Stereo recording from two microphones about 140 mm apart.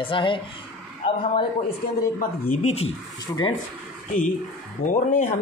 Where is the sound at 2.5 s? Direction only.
50° left (ahead or behind).